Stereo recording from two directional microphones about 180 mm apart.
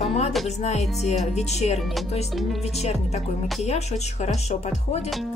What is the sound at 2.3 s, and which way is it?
Speech, centre (ahead or behind).